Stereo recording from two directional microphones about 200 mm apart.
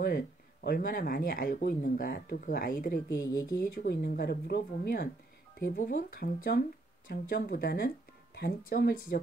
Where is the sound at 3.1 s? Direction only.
20° left (ahead or behind).